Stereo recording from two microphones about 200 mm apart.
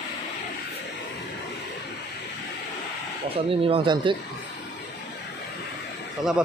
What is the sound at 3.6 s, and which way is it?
Speech, 25° right (ahead or behind).